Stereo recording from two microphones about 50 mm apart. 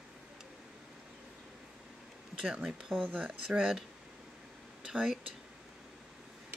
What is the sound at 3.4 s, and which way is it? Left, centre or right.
Speech, centre.